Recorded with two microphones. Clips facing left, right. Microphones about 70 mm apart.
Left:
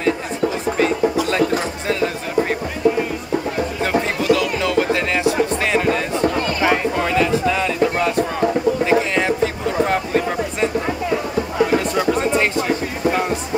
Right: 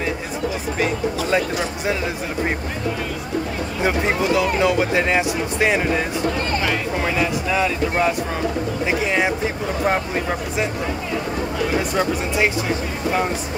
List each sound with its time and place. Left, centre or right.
3.8 s speech: right
7.2 s speech: centre